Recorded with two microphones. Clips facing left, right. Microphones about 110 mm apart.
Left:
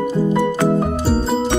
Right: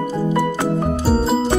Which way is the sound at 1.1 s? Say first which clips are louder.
Right 1 dB; centre (ahead or behind).